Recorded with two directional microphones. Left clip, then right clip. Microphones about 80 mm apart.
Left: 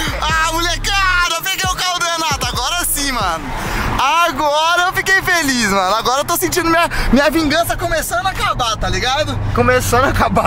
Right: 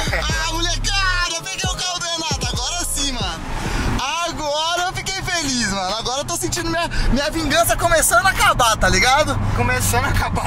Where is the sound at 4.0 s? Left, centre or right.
Left.